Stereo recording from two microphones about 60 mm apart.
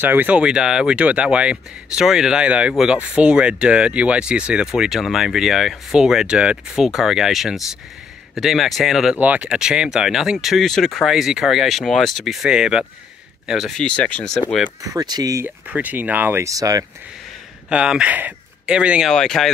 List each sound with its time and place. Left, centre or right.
0.0 s speech: right
0.4 s speech: centre
9.1 s speech: right
9.5 s speech: centre
10.6 s speech: centre
12.4 s speech: centre
13.7 s speech: centre
14.2 s speech: centre
14.8 s speech: right
15.4 s speech: right
16.4 s speech: right
17.6 s speech: centre
19.1 s speech: centre